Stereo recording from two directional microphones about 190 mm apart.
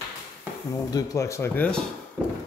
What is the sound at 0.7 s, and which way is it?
Speech, 20° left (ahead or behind).